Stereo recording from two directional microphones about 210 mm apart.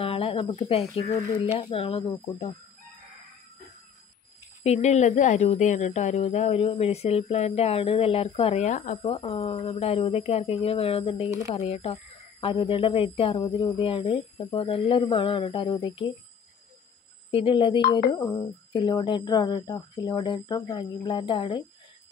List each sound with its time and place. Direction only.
0.0 s speech: 25° left (ahead or behind)
4.6 s speech: 30° left (ahead or behind)
17.3 s speech: 25° left (ahead or behind)